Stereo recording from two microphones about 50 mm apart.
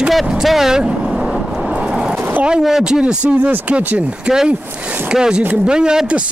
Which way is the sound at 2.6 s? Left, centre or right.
Centre.